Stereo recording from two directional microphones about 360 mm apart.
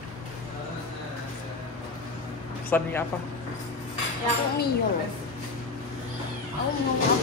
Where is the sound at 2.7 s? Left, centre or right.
Centre.